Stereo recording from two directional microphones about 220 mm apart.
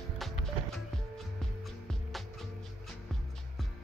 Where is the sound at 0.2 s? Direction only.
Centre (ahead or behind).